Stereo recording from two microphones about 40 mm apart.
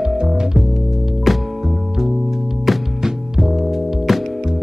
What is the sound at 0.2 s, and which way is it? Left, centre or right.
Music, centre.